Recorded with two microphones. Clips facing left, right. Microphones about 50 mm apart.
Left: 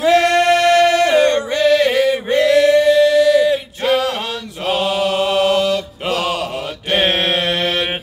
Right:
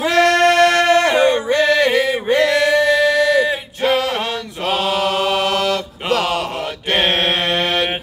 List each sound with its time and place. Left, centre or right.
0.1 s music: centre
0.5 s music: right
1.1 s a sound: centre
1.5 s male singing: right
1.9 s male singing: centre
2.3 s male singing: right
3.4 s male singing: right
4.9 s chant: right
5.3 s mantra: right
7.0 s mantra: centre